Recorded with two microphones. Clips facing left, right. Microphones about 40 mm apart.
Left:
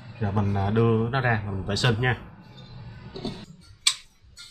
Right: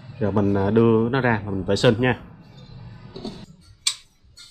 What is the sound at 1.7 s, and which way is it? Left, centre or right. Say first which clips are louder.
Speech: right 8 dB; right.